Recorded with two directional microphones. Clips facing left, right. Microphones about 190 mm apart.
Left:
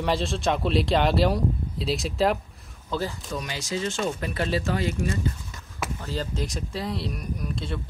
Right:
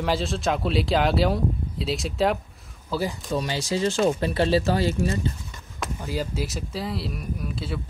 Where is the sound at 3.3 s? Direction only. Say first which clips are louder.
Right 5 dB; 30° right (ahead or behind).